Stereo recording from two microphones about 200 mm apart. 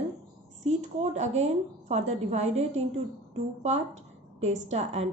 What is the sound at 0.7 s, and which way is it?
A woman's voice, 35° right (ahead or behind).